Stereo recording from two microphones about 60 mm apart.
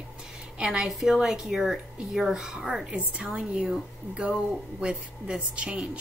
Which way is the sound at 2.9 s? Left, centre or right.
Right.